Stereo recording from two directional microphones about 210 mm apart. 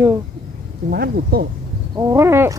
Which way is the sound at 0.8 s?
45° right (ahead or behind).